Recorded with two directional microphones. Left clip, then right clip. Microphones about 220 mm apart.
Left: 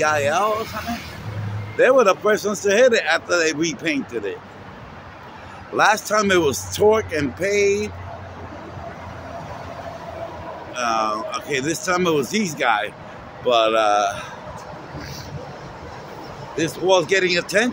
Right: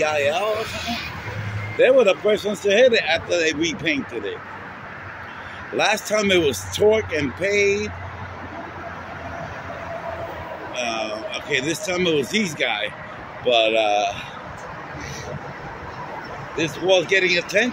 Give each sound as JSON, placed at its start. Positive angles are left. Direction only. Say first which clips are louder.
{"t": 0.0, "sound": "speech", "louder": "left 2 dB", "side_deg": 0}
{"t": 1.8, "sound": "speech", "louder": "left 1 dB", "side_deg": 5}
{"t": 6.0, "sound": "speech", "louder": "left 1 dB", "side_deg": 5}
{"t": 10.8, "sound": "speech", "louder": "left 5 dB", "side_deg": 5}
{"t": 16.5, "sound": "speech", "louder": "left 1 dB", "side_deg": 10}